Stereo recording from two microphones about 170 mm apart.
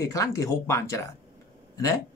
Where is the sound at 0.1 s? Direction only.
20° left (ahead or behind).